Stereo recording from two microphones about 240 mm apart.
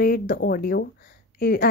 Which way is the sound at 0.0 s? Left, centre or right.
Left.